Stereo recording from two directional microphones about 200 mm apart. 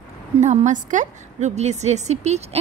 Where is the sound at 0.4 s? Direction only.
35° right (ahead or behind).